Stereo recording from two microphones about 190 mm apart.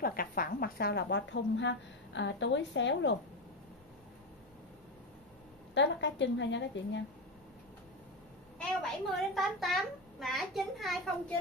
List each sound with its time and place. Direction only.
0.0 s a woman's voice: 50° left (ahead or behind); by 3.2 s 70° left (ahead or behind)
5.8 s a woman's voice: 70° left (ahead or behind)
9.1 s a child's voice: centre (ahead or behind)